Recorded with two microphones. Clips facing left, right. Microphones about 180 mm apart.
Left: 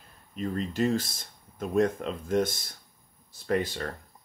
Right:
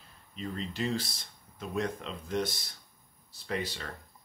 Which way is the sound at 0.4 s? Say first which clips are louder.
Left 7 dB; 50° left (ahead or behind).